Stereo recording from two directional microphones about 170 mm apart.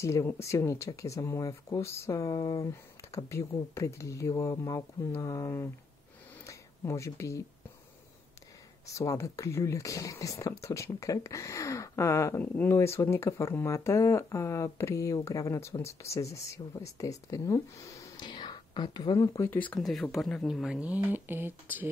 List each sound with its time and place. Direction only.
0.0 s speech: 15° left (ahead or behind)
6.4 s a sound: 15° left (ahead or behind)
8.8 s speech: 20° left (ahead or behind); by 21.8 s 10° right (ahead or behind)